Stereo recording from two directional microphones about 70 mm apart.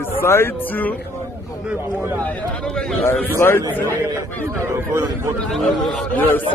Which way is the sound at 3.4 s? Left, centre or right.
Left.